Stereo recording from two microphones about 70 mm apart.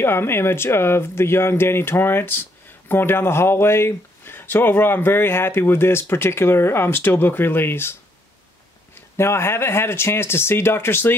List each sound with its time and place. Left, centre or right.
0.0 s speech: left
9.1 s speech: left